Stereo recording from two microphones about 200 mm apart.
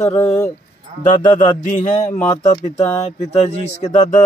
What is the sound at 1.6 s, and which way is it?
Speech, 40° left (ahead or behind).